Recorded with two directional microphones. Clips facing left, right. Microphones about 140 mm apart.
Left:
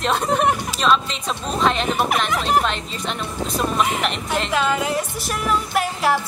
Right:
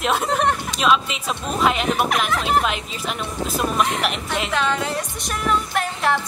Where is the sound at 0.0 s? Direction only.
5° right (ahead or behind).